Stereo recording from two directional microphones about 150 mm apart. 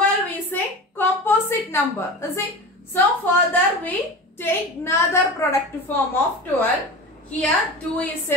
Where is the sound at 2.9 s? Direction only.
10° left (ahead or behind).